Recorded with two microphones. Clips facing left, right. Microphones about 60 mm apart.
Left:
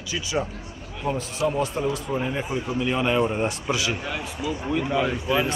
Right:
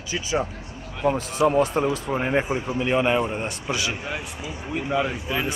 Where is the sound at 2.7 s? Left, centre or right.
Right.